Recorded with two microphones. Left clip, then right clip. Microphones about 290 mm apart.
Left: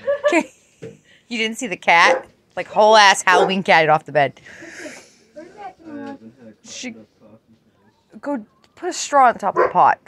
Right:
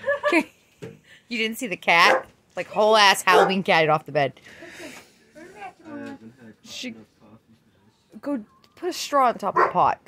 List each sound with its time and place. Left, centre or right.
0.2 s dog: centre
1.3 s a woman's voice: centre
6.6 s speech: centre
8.2 s speech: centre